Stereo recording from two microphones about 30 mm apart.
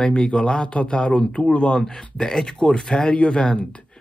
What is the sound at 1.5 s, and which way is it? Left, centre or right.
Speech, left.